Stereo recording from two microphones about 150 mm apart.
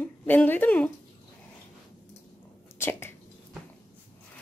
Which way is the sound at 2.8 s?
15° left (ahead or behind).